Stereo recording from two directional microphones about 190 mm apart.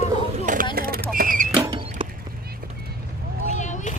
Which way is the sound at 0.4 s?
45° right (ahead or behind).